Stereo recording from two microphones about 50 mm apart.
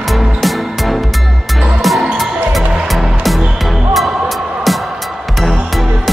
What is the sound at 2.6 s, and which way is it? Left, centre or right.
Music, right.